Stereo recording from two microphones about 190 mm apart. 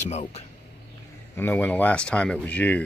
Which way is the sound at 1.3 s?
10° left (ahead or behind).